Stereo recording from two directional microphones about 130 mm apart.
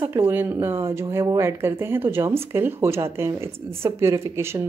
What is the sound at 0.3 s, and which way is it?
A woman's voice, 15° right (ahead or behind).